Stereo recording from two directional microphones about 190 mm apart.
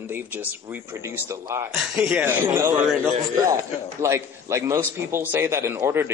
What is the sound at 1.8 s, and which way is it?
A man's voice, 5° right (ahead or behind).